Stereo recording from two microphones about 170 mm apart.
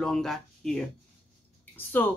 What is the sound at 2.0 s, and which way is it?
Speech, 10° left (ahead or behind).